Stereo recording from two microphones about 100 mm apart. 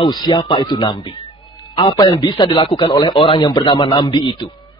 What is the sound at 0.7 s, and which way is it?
A man's voice, 50° left (ahead or behind).